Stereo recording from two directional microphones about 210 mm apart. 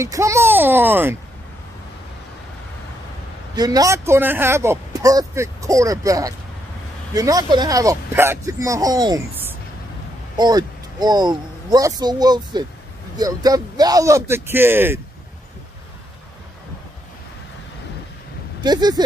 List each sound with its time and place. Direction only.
0.0 s speech: 15° right (ahead or behind)
3.5 s speech: 20° right (ahead or behind)
18.6 s speech: 20° right (ahead or behind)